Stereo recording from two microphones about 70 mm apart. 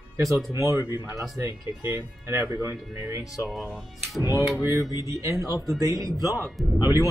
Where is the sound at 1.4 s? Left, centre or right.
Right.